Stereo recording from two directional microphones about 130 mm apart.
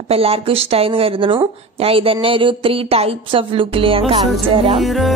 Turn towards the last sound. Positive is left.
turn(degrees=0)  # may be behind; listen again after turning